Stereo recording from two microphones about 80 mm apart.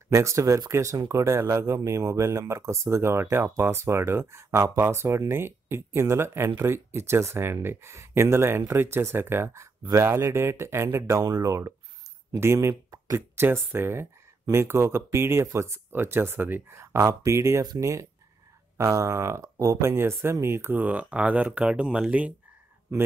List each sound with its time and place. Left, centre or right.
0.1 s speech: right
11.2 s speech: right; by 22.3 s centre